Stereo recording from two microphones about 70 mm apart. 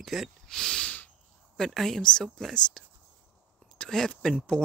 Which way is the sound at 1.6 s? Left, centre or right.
Centre.